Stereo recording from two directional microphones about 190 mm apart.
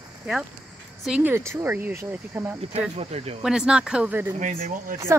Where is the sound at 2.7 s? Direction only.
35° right (ahead or behind).